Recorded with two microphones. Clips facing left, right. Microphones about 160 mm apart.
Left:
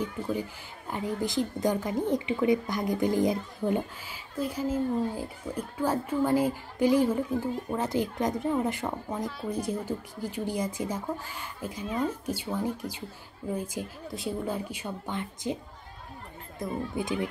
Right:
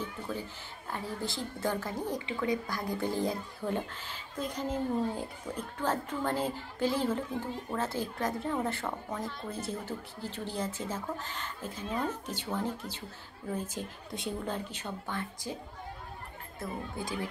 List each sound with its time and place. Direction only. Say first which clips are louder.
0.0 s a woman's voice: left 6 dB; 15° left (ahead or behind)
16.5 s speech: left 6 dB; 20° left (ahead or behind)